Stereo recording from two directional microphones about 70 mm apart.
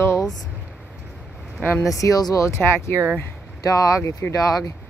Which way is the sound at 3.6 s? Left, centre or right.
Left.